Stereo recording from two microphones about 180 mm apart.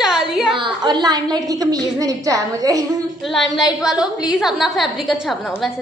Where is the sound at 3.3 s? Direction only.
Centre (ahead or behind).